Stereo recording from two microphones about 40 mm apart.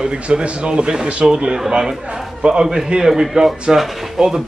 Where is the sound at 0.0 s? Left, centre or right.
Right.